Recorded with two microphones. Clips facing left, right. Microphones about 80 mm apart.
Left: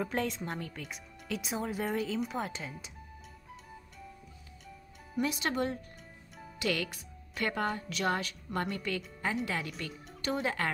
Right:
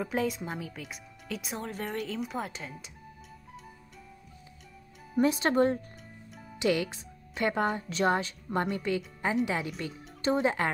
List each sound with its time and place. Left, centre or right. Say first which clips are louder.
0.0 s speech: right 3 dB; centre
5.1 s speech: right 7 dB; right
6.6 s a woman's voice: right 6 dB; right